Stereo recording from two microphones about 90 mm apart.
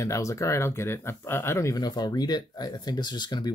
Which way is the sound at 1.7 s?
50° left (ahead or behind).